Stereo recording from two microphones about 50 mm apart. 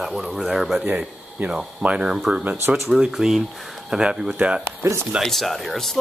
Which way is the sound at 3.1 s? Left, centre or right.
Centre.